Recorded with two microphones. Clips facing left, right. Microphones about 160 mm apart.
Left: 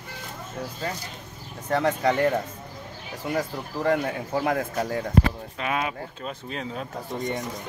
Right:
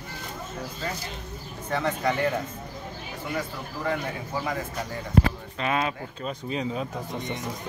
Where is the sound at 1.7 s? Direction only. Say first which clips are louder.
Left 4 dB; 40° left (ahead or behind).